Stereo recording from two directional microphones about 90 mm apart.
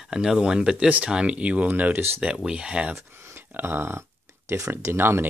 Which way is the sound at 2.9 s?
30° right (ahead or behind).